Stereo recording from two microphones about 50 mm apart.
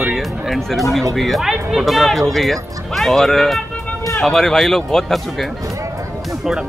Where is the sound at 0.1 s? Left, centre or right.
Centre.